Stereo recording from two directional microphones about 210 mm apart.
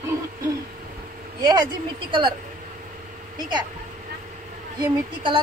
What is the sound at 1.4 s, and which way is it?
Speech, 20° right (ahead or behind).